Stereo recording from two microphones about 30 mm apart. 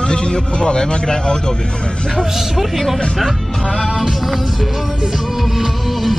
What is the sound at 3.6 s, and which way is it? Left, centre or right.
Music, left.